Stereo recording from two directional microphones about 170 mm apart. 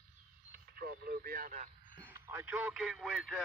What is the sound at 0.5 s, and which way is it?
Speech, 65° right (ahead or behind).